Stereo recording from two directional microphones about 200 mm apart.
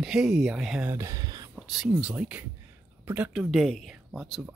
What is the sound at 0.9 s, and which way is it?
Speech, 15° right (ahead or behind).